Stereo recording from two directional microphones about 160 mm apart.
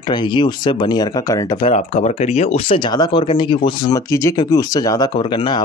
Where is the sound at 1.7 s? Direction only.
45° left (ahead or behind).